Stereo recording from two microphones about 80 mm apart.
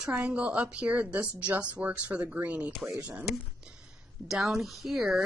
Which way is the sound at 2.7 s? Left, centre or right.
Centre.